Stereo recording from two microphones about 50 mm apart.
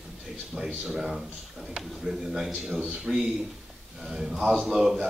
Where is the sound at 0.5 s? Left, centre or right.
Centre.